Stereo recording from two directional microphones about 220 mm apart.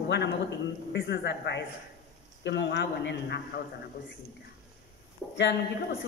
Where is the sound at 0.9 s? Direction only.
55° left (ahead or behind).